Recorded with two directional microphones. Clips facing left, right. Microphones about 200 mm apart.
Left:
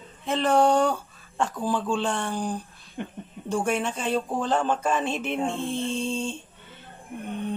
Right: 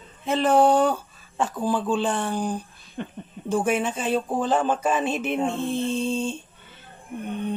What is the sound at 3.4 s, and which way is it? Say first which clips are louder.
Mantra: right 3 dB; 5° right (ahead or behind).